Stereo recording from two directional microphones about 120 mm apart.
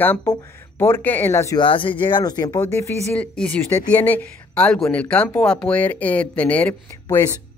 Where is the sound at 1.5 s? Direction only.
45° left (ahead or behind).